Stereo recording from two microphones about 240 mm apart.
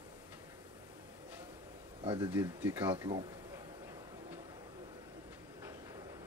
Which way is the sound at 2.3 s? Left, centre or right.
Centre.